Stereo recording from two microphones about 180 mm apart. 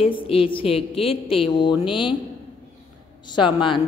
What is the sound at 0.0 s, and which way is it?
A woman's voice, 30° left (ahead or behind).